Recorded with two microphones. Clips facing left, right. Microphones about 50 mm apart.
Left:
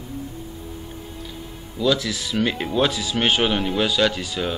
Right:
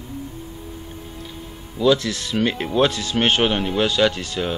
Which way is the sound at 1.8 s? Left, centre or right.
Centre.